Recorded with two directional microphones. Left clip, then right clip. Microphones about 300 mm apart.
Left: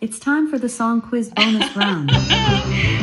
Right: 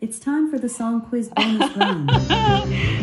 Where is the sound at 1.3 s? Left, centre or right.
Centre.